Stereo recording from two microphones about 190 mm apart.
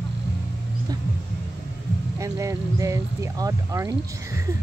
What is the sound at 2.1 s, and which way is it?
Speech, 15° right (ahead or behind).